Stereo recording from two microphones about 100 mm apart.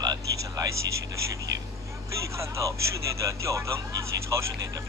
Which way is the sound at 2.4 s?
30° right (ahead or behind).